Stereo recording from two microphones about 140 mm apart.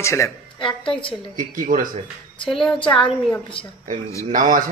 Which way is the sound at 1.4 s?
75° right (ahead or behind).